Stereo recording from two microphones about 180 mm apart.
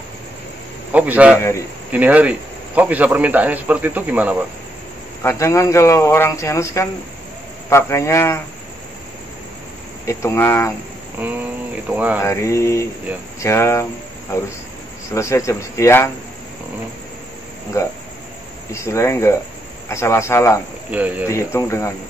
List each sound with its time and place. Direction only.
0.9 s a man's voice: 10° right (ahead or behind)
5.2 s speech: 15° left (ahead or behind)
10.0 s speech: 15° left (ahead or behind)
11.2 s a man's voice: 10° right (ahead or behind)
12.3 s speech: 15° left (ahead or behind)
15.0 s speech: 15° left (ahead or behind)
17.8 s speech: 15° left (ahead or behind)
20.9 s a man's voice: 10° right (ahead or behind)
21.3 s speech: 15° left (ahead or behind)